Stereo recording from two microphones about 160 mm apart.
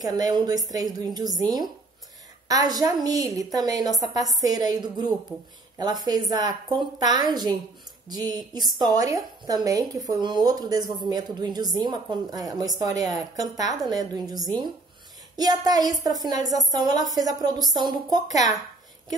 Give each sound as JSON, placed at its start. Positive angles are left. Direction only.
{"t": 0.0, "sound": "speech", "side_deg": -25}